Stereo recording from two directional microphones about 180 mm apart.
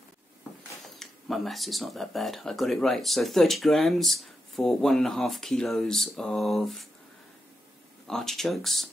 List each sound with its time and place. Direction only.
0.9 s speech: centre (ahead or behind)
8.1 s speech: centre (ahead or behind)